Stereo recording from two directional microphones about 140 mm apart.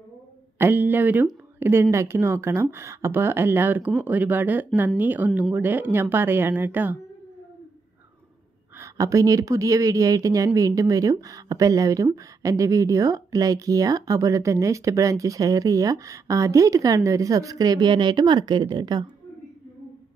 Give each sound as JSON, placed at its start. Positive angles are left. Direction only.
{"t": 0.6, "sound": "speech", "side_deg": -15}
{"t": 8.7, "sound": "speech", "side_deg": -20}